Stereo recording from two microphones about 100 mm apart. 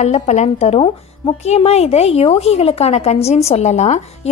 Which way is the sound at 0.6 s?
75° left (ahead or behind).